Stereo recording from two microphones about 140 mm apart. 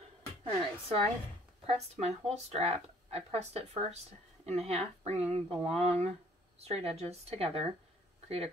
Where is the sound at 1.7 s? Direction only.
50° right (ahead or behind).